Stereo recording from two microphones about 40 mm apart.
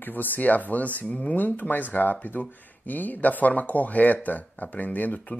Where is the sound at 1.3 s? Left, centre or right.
Left.